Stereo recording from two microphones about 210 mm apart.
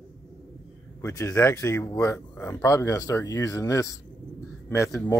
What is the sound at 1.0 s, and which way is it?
Speech, 15° left (ahead or behind).